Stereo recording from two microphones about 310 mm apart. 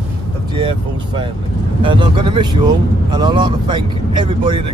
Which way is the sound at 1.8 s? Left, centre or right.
Centre.